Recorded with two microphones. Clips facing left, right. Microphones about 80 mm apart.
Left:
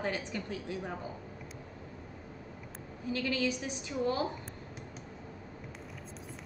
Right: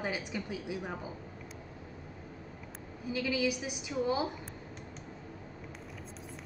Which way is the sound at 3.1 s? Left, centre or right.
Centre.